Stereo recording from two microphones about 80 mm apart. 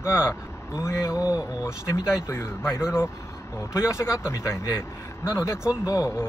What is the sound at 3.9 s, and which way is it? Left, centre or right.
Speech, left.